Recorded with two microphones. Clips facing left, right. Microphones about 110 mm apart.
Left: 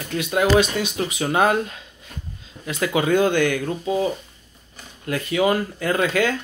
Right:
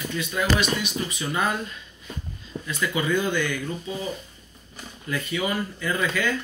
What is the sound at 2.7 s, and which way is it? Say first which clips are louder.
Speech: left 5 dB; 80° left.